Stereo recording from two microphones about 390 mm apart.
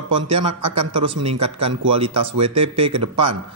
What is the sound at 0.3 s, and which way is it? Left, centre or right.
A man's voice, centre.